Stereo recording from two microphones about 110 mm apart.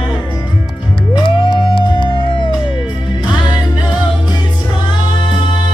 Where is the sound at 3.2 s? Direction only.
40° left (ahead or behind).